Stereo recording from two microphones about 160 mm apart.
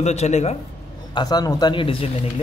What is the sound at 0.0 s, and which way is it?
Speech, 45° left (ahead or behind).